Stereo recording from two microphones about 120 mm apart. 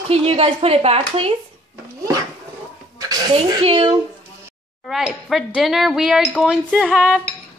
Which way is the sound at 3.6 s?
45° right (ahead or behind).